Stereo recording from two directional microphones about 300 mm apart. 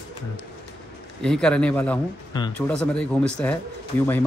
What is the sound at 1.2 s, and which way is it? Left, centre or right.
A man's voice, centre.